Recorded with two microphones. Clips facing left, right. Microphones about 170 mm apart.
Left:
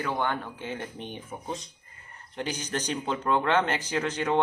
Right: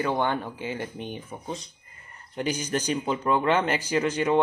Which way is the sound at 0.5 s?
5° right (ahead or behind).